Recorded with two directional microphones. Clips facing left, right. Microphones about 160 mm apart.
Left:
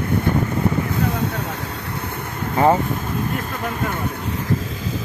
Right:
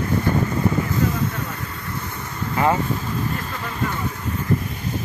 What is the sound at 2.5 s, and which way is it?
Vehicle, 30° left (ahead or behind).